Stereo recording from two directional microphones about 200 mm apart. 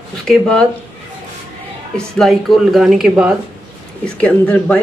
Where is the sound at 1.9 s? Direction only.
Centre (ahead or behind).